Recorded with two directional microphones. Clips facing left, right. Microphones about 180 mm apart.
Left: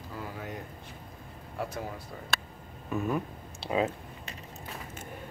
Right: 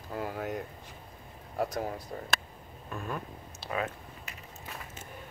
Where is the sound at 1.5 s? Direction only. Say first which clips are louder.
Right 4 dB; 40° right (ahead or behind).